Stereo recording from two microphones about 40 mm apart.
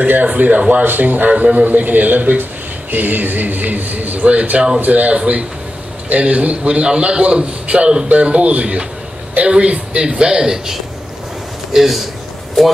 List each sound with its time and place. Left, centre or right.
0.0 s speech: right
4.7 s a man's voice: right; by 10.6 s centre
11.7 s a man's voice: centre